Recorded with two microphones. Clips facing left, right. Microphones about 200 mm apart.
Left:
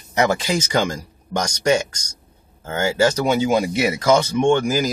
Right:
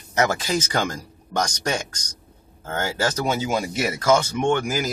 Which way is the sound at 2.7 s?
10° left (ahead or behind).